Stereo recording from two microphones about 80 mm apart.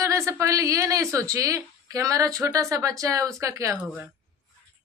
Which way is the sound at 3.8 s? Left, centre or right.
Centre.